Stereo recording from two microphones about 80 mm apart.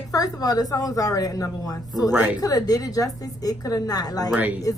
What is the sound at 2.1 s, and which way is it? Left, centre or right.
Speech, right.